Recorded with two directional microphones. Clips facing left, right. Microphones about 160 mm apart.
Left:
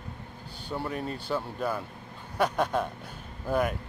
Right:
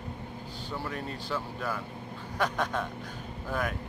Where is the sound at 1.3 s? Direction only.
25° left (ahead or behind).